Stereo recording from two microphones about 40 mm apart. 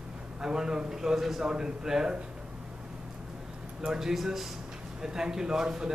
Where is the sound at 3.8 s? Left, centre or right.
Centre.